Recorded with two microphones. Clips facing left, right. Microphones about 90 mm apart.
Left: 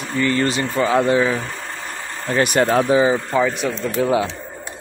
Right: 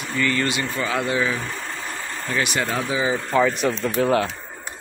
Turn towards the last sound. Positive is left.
turn(degrees=5)  # may be behind; listen again after turning